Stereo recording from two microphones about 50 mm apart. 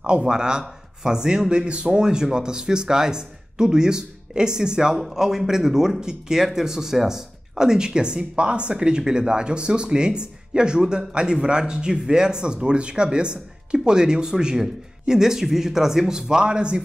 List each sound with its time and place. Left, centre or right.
0.0 s speech: centre